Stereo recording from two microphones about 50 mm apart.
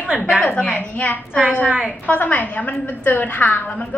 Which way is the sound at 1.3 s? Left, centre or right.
Centre.